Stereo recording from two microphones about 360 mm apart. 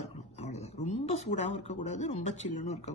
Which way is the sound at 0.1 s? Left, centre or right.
Centre.